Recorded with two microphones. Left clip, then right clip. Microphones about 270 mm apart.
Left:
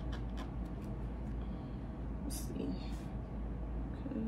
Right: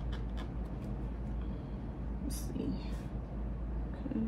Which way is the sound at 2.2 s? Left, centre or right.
Right.